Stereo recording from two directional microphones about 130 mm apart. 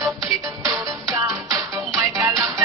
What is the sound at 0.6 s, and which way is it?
Music, 25° right (ahead or behind).